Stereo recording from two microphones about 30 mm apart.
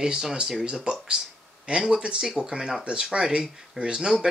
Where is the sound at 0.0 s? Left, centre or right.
Right.